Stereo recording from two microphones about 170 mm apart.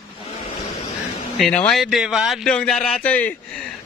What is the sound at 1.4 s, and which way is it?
Speech, 5° left (ahead or behind).